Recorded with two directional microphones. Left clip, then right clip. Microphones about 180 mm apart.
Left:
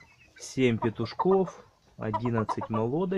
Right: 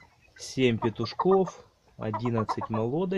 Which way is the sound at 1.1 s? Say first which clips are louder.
Right 1 dB; 25° left (ahead or behind).